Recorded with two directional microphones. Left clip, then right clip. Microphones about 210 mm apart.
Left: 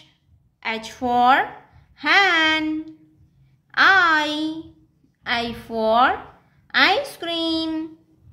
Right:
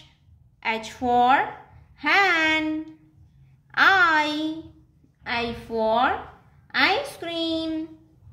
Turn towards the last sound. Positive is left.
turn(degrees=15)  # may be behind; listen again after turning